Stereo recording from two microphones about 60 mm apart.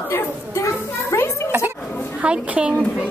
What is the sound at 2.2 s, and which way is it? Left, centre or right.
Speech, centre.